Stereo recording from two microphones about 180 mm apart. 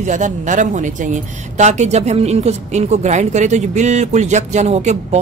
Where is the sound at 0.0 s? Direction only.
45° right (ahead or behind).